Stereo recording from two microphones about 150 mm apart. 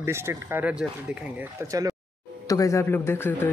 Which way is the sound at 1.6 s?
20° right (ahead or behind).